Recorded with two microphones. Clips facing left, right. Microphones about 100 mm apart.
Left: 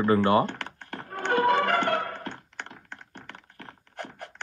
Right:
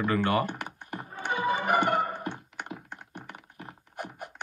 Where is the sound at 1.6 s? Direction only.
15° right (ahead or behind).